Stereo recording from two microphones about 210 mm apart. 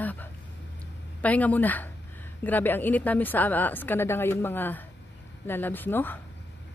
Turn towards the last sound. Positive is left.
turn(degrees=10)  # may be behind; listen again after turning